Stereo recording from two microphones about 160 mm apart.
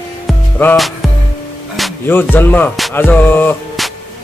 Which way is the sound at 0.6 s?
15° left (ahead or behind).